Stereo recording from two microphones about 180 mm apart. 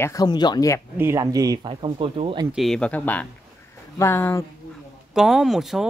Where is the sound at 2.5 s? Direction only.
Centre (ahead or behind).